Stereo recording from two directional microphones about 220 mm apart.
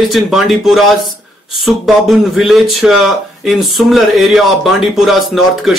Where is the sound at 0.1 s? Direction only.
Centre (ahead or behind).